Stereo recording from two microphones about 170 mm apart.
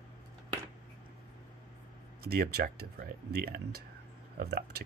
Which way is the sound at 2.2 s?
65° right (ahead or behind).